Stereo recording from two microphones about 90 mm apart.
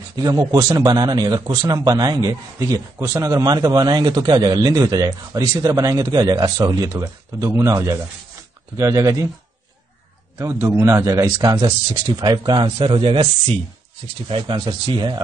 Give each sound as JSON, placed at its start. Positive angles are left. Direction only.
{"t": 0.1, "sound": "a man's voice", "side_deg": -45}
{"t": 10.3, "sound": "a man's voice", "side_deg": -30}
{"t": 11.3, "sound": "speech", "side_deg": -50}
{"t": 14.4, "sound": "speech", "side_deg": -55}